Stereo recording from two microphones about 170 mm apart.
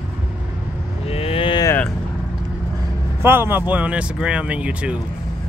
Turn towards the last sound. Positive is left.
turn(degrees=-5)  # may be behind; listen again after turning